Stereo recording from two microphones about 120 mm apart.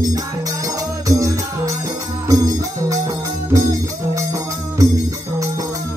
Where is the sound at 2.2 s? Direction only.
30° right (ahead or behind).